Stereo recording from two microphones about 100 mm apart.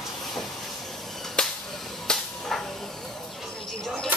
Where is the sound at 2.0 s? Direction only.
5° left (ahead or behind).